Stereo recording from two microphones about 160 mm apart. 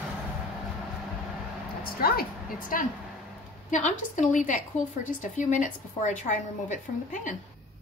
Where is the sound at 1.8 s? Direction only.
70° left (ahead or behind); by 7.4 s 50° left (ahead or behind).